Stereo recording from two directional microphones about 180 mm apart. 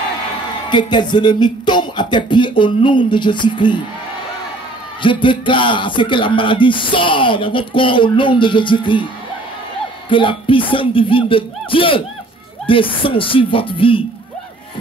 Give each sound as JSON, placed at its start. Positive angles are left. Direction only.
{"t": 0.7, "sound": "speech", "side_deg": 25}
{"t": 5.0, "sound": "speech", "side_deg": 25}
{"t": 10.0, "sound": "speech", "side_deg": 30}